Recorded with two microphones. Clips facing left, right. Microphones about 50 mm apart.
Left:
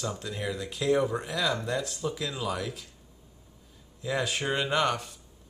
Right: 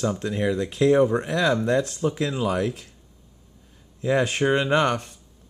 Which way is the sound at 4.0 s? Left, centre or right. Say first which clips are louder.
Right 8 dB; right.